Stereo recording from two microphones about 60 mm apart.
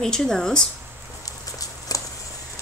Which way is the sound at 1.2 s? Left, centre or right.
Left.